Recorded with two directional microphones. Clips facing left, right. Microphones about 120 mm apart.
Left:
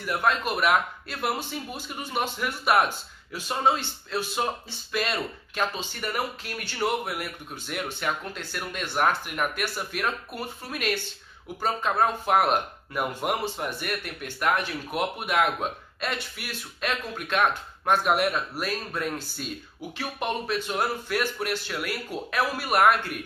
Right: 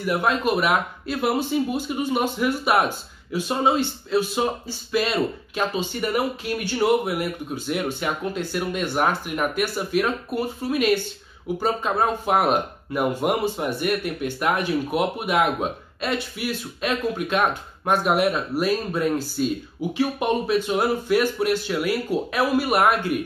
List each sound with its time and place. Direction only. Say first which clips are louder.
0.0 s speech: right 4 dB; 10° right (ahead or behind)
0.5 s speech: right 3 dB; centre (ahead or behind)